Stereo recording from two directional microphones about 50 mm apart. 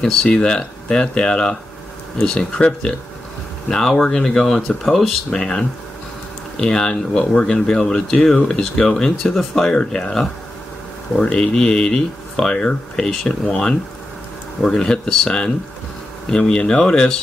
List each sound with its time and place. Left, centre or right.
0.0 s speech: centre